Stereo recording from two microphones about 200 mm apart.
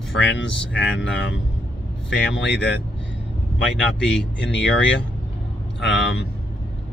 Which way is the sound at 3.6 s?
65° left (ahead or behind).